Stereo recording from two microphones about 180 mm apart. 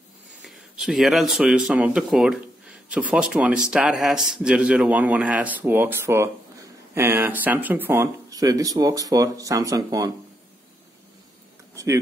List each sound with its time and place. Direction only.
0.4 s a man's voice: 5° right (ahead or behind); by 10.1 s 20° right (ahead or behind)
11.7 s speech: 15° right (ahead or behind)